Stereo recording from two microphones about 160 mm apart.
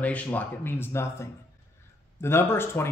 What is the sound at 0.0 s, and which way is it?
Speech, 10° left (ahead or behind).